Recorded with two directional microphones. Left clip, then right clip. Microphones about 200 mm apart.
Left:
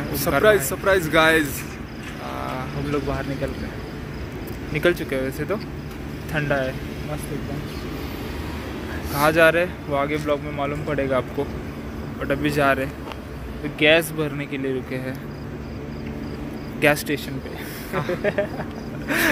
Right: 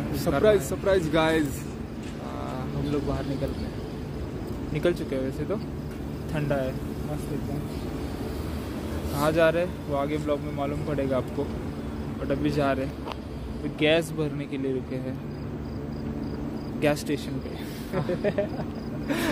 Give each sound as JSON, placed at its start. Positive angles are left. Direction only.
{"t": 0.2, "sound": "speech", "side_deg": 10}
{"t": 0.5, "sound": "speech", "side_deg": -5}
{"t": 2.5, "sound": "clip-clop", "side_deg": 10}
{"t": 4.7, "sound": "speech", "side_deg": 10}
{"t": 9.2, "sound": "speech", "side_deg": 10}
{"t": 12.3, "sound": "speech", "side_deg": 10}
{"t": 16.8, "sound": "speech", "side_deg": 5}